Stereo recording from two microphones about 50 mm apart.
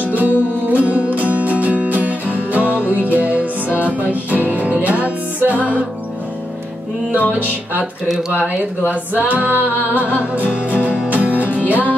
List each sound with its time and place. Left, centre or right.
0.1 s music: right
7.1 s music: right